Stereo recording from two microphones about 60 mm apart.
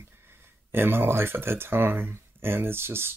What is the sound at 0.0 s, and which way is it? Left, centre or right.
Speech, right.